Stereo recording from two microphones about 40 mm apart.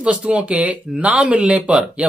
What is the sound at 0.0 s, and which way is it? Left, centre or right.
Speech, right.